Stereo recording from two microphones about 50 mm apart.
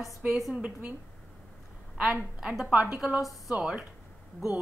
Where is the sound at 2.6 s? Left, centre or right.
Right.